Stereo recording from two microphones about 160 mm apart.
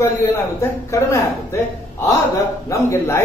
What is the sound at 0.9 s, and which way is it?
Speech, 20° left (ahead or behind).